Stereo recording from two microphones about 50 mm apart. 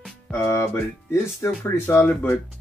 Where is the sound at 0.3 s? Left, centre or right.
Left.